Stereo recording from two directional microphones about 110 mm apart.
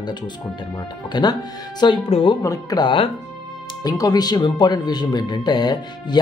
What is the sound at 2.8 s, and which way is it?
Speech, 50° left (ahead or behind).